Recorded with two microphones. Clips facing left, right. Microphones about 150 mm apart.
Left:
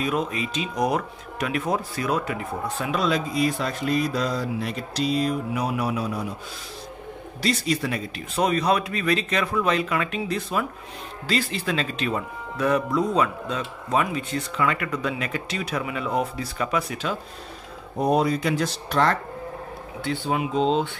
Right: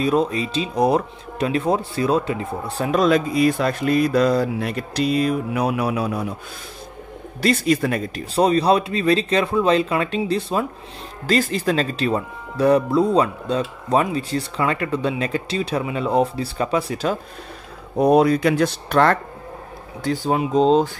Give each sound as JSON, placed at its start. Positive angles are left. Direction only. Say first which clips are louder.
{"t": 0.0, "sound": "speech", "louder": "right 6 dB", "side_deg": -35}
{"t": 7.4, "sound": "speech", "louder": "right 6 dB", "side_deg": -55}
{"t": 8.4, "sound": "speech", "louder": "right 5 dB", "side_deg": -30}
{"t": 11.2, "sound": "speech", "louder": "right 6 dB", "side_deg": -45}
{"t": 17.9, "sound": "speech", "louder": "right 6 dB", "side_deg": -65}
{"t": 20.0, "sound": "speech", "louder": "right 5 dB", "side_deg": -40}